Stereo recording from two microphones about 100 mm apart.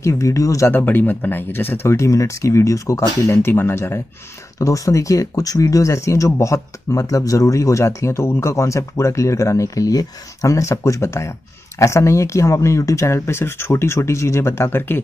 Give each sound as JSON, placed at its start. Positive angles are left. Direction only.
{"t": 0.0, "sound": "speech", "side_deg": 30}
{"t": 0.7, "sound": "speech", "side_deg": 20}